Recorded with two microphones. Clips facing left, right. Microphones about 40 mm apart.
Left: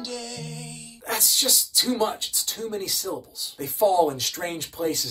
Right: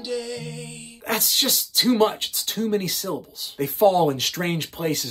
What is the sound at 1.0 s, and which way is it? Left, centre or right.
Speech, right.